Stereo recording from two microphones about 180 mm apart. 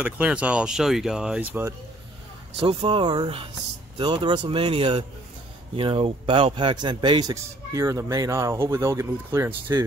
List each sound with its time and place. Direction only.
0.0 s speech: 10° right (ahead or behind)
2.5 s a man's voice: 30° right (ahead or behind)